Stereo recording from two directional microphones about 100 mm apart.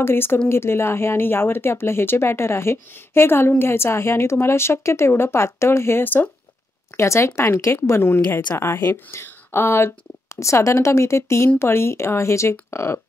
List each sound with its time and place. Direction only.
0.0 s speech: 25° left (ahead or behind)